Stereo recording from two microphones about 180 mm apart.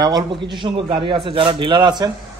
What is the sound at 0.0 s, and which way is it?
A man's voice, 25° right (ahead or behind).